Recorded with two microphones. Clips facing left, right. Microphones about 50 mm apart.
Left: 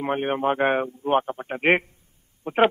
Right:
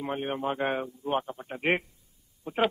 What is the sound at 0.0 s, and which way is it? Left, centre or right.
A man's voice, left.